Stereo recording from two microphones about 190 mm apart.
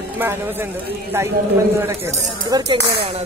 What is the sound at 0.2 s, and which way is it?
Speech, 10° right (ahead or behind).